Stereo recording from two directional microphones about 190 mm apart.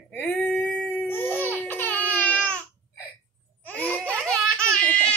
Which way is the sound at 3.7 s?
10° left (ahead or behind).